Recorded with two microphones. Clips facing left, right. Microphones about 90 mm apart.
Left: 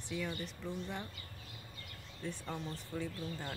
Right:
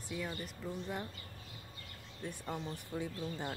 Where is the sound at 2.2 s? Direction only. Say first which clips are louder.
Right 1 dB; 10° right (ahead or behind).